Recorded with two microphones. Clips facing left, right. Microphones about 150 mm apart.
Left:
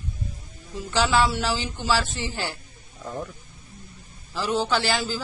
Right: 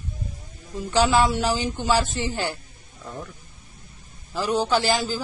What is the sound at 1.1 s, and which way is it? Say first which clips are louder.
Speech: right 2 dB; 40° right (ahead or behind).